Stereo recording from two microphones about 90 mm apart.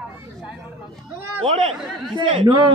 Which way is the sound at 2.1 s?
60° right (ahead or behind).